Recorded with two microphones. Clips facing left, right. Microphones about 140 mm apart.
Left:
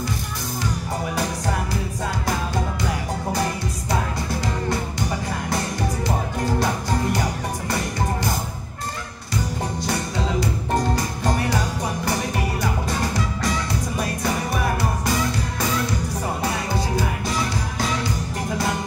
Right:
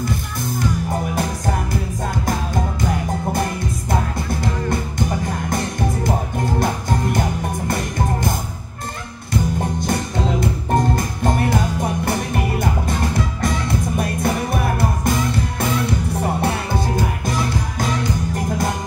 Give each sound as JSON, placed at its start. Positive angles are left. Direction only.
{"t": 1.1, "sound": "music", "side_deg": -50}
{"t": 3.9, "sound": "music", "side_deg": -50}
{"t": 6.6, "sound": "music", "side_deg": -50}
{"t": 16.2, "sound": "music", "side_deg": -60}